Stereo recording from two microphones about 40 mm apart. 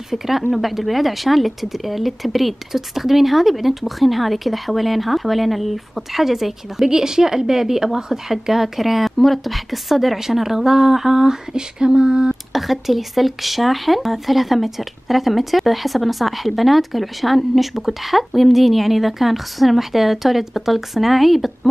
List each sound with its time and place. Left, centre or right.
0.5 s a woman's voice: centre; by 12.4 s right
12.5 s speech: centre